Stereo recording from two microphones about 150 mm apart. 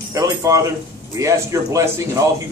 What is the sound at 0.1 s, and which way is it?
A man's voice, 20° right (ahead or behind).